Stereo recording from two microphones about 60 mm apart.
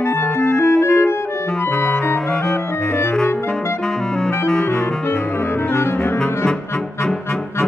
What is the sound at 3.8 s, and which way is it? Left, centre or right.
Music, centre.